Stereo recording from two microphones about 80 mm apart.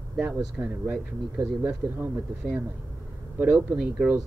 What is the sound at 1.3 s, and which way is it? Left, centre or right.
Speech, right.